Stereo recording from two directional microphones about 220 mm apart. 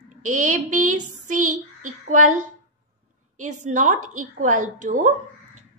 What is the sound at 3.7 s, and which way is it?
A woman's voice, 35° right (ahead or behind).